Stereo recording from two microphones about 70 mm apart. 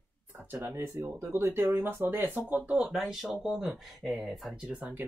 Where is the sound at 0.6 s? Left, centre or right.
Right.